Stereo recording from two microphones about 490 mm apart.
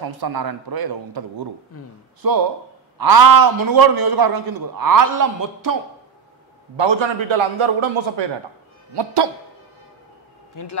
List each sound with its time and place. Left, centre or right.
0.0 s a man's voice: right
6.8 s a man's voice: right
8.9 s speech: right
10.5 s a man's voice: left